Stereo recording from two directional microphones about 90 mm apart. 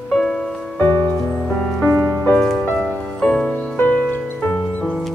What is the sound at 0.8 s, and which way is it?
Music, 25° left (ahead or behind).